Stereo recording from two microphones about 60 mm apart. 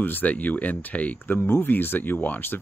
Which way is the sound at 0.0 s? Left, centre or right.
Left.